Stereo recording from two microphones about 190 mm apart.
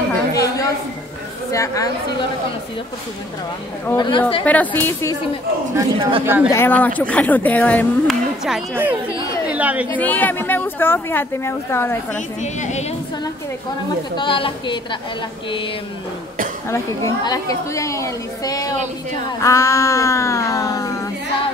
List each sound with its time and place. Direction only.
0.3 s a sound: 20° left (ahead or behind)
1.5 s a woman's voice: 15° left (ahead or behind)
3.8 s a woman's voice: 20° left (ahead or behind)
4.5 s a woman's voice: 10° left (ahead or behind)
5.8 s a man's voice: 30° right (ahead or behind)
6.2 s speech: 10° right (ahead or behind)
6.5 s a woman's voice: 10° left (ahead or behind)
8.5 s speech: 5° right (ahead or behind)
9.1 s speech: 20° left (ahead or behind)
9.5 s speech: 10° right (ahead or behind)
9.9 s a woman's voice: 10° left (ahead or behind)
12.4 s a woman's voice: 40° left (ahead or behind)
14.1 s a woman's voice: 25° left (ahead or behind)
16.6 s a woman's voice: 15° left (ahead or behind)